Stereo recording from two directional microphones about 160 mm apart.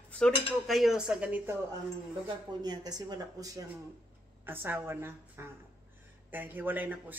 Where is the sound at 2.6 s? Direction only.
25° right (ahead or behind).